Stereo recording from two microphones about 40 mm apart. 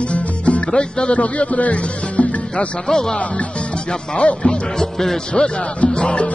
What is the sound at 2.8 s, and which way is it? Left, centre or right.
Music, centre.